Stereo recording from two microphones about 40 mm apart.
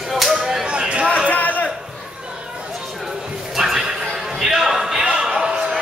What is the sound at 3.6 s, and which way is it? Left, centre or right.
Horse, centre.